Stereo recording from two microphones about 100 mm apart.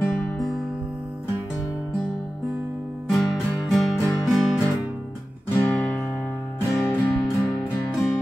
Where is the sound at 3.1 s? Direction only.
Centre (ahead or behind).